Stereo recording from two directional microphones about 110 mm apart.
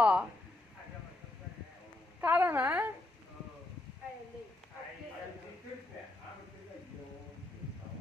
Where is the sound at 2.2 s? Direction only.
15° right (ahead or behind).